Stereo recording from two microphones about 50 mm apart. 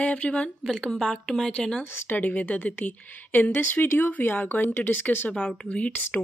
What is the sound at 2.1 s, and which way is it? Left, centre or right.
Speech, left.